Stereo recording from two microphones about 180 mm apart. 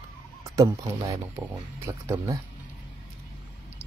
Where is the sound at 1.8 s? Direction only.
15° right (ahead or behind).